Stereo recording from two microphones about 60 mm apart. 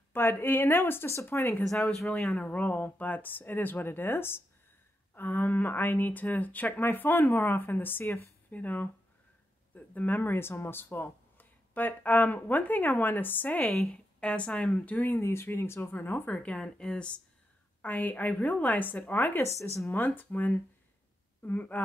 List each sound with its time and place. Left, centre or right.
0.1 s speech: left
1.1 s speech: left
2.0 s speech: centre
2.3 s speech: left
8.5 s speech: left
16.3 s speech: centre
17.8 s speech: left